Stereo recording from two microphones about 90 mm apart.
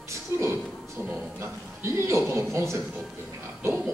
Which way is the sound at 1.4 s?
30° right (ahead or behind).